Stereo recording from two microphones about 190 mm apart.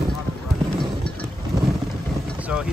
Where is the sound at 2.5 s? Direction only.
5° right (ahead or behind).